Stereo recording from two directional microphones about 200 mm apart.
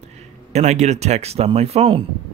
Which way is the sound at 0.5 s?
35° right (ahead or behind).